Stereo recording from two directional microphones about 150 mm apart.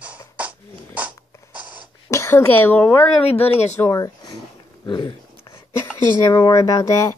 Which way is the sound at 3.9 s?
25° left (ahead or behind).